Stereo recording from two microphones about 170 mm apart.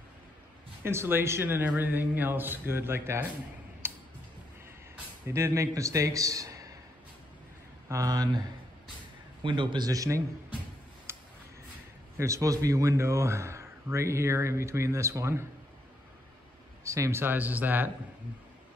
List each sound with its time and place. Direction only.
0.8 s a man's voice: 15° right (ahead or behind)
3.8 s tick-tock: 15° right (ahead or behind)
5.3 s a man's voice: 15° right (ahead or behind)
7.9 s a man's voice: 20° right (ahead or behind)
9.4 s a man's voice: 30° right (ahead or behind)
11.1 s a sound: 15° right (ahead or behind)
12.2 s a man's voice: 20° right (ahead or behind)
16.8 s a man's voice: 15° right (ahead or behind)